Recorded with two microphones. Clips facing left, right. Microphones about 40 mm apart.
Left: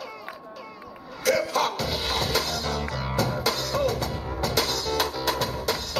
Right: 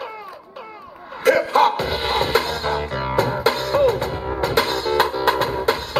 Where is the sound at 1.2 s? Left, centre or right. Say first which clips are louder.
Right 8 dB; right.